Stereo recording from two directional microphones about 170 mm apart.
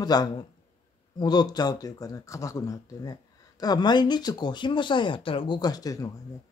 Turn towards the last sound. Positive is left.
turn(degrees=20)  # may be behind; listen again after turning